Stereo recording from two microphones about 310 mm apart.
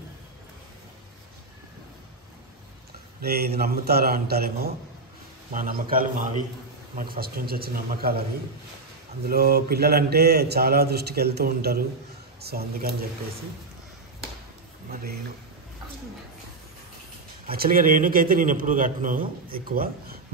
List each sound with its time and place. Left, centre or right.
3.2 s a man's voice: right
9.2 s a man's voice: right
17.5 s a man's voice: right